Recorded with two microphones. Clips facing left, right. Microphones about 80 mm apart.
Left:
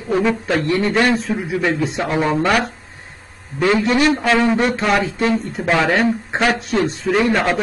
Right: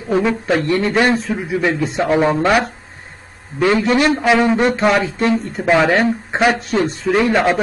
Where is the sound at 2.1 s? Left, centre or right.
Centre.